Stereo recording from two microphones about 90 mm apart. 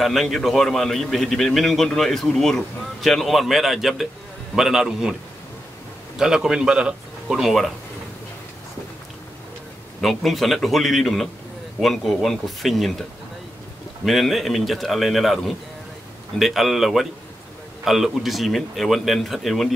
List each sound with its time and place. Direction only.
0.0 s a man's voice: centre (ahead or behind)
6.1 s a man's voice: 5° right (ahead or behind)
10.0 s a man's voice: centre (ahead or behind)
14.0 s a man's voice: centre (ahead or behind)